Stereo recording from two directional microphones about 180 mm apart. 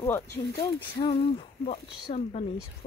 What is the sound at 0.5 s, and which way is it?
Speech, 25° left (ahead or behind).